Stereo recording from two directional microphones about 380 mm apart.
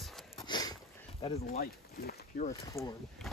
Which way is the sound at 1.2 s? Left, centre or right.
Left.